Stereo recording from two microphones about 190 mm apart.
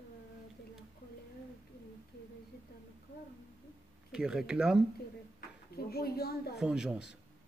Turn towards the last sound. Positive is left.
turn(degrees=-5)  # may be behind; listen again after turning